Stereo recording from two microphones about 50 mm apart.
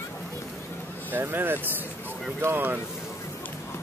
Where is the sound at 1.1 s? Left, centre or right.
Right.